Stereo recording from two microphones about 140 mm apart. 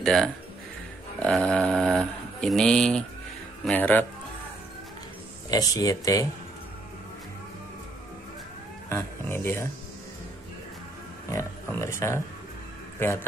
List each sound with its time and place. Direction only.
0.0 s a man's voice: 5° left (ahead or behind)
5.5 s speech: 25° left (ahead or behind)
8.8 s speech: 15° left (ahead or behind)
11.2 s speech: 20° left (ahead or behind)